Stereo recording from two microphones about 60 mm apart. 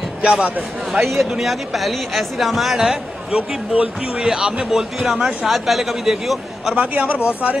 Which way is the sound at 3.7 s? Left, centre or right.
Right.